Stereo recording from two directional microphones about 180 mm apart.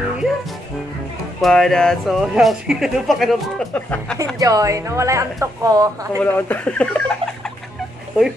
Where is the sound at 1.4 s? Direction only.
Centre (ahead or behind).